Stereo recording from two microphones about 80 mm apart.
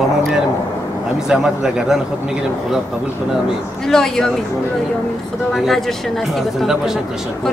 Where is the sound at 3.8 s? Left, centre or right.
Centre.